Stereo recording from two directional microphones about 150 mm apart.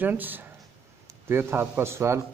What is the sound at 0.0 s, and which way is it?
A man's voice, 10° right (ahead or behind).